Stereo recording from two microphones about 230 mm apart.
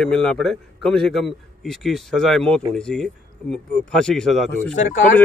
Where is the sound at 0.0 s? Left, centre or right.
Centre.